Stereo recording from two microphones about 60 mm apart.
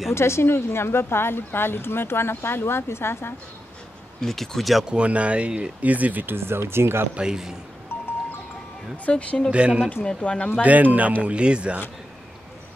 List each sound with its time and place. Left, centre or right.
0.1 s speech: left
4.2 s speech: centre
4.8 s speech: centre
6.3 s speech: right
7.2 s speech: centre
7.9 s music: left
8.9 s speech: left
9.5 s speech: centre
10.0 s speech: centre
10.6 s speech: right